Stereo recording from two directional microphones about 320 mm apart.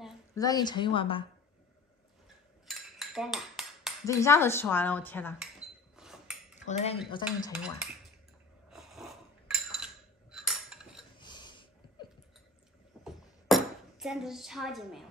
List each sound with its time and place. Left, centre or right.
0.3 s speech: centre
2.7 s cutlery: centre
4.0 s speech: centre
5.9 s a sound: centre
6.6 s cutlery: centre
7.5 s dishes: centre
8.6 s a sound: centre
10.3 s cutlery: centre
11.1 s a sound: centre
13.0 s dishes: centre